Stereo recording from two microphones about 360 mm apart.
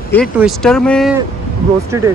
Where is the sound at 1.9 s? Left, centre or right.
Centre.